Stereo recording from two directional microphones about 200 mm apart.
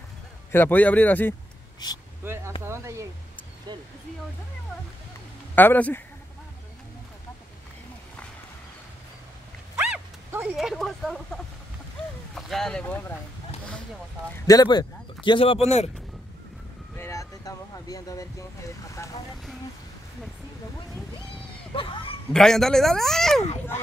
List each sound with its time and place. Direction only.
0.5 s speech: 10° left (ahead or behind)
1.8 s speech: 20° left (ahead or behind)
2.2 s speech: 15° right (ahead or behind)
5.6 s speech: 10° left (ahead or behind)
9.8 s dog: 5° right (ahead or behind)
12.4 s speech: centre (ahead or behind)
14.4 s speech: 20° left (ahead or behind)
16.9 s a sound: 15° left (ahead or behind)
21.7 s a sound: 25° left (ahead or behind)
22.3 s speech: 5° left (ahead or behind)